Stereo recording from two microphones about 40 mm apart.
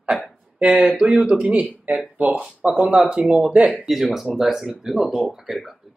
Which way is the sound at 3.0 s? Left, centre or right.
Right.